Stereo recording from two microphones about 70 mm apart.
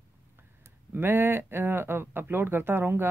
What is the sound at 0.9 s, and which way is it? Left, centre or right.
Speech, right.